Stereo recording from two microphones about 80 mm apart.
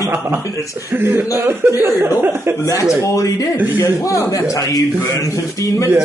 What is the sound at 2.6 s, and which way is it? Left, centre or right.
Speech, left.